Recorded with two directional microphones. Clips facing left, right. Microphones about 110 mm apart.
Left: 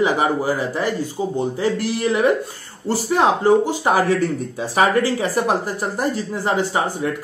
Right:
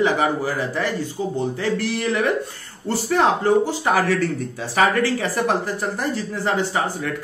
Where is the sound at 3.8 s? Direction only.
20° left (ahead or behind).